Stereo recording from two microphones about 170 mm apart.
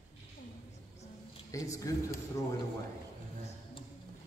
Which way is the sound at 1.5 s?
20° left (ahead or behind).